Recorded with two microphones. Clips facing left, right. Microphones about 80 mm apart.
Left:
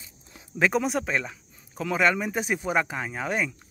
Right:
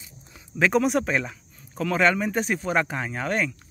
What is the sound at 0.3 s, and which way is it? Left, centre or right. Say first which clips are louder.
Speech: right 2 dB; centre.